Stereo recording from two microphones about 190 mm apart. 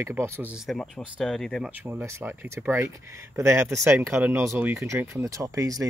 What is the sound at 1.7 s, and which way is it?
Speech, 10° right (ahead or behind).